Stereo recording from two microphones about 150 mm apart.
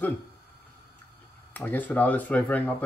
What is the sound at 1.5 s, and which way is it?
Speech, 10° left (ahead or behind).